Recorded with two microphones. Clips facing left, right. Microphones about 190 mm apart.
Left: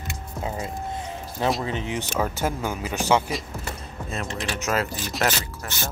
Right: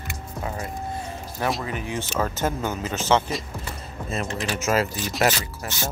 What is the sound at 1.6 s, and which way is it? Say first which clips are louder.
Speech: left 1 dB; 25° left (ahead or behind).